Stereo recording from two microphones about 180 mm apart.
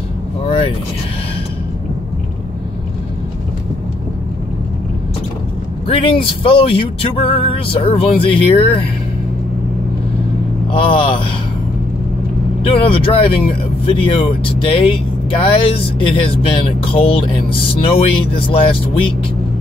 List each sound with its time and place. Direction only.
5.9 s speech: 30° left (ahead or behind)
10.7 s speech: 30° left (ahead or behind)
12.6 s speech: 30° left (ahead or behind)